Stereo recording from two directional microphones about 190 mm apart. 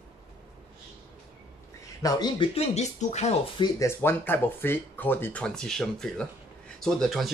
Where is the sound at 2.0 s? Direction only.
20° left (ahead or behind).